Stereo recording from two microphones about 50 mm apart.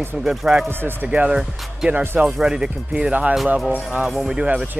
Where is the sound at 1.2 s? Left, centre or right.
Centre.